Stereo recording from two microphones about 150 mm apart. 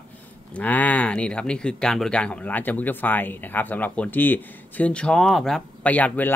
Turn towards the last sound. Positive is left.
turn(degrees=10)  # may be behind; listen again after turning